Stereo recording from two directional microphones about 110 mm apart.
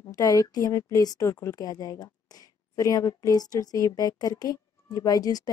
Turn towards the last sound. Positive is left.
turn(degrees=35)  # may be behind; listen again after turning